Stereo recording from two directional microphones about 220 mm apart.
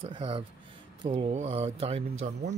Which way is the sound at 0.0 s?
25° right (ahead or behind).